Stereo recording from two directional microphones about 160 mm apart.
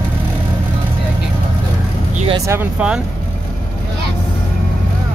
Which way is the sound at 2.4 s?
15° right (ahead or behind).